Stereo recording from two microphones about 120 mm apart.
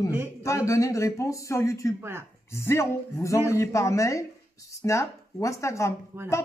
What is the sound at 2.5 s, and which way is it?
Speech, 20° left (ahead or behind).